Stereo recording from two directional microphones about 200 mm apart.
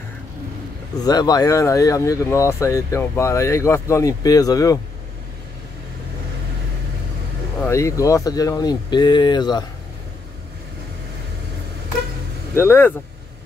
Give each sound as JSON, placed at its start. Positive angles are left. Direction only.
{"t": 1.0, "sound": "speech", "side_deg": 20}
{"t": 7.6, "sound": "speech", "side_deg": 15}
{"t": 12.5, "sound": "speech", "side_deg": 10}